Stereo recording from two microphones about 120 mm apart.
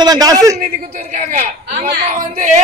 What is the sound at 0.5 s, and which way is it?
Speech, 75° right (ahead or behind).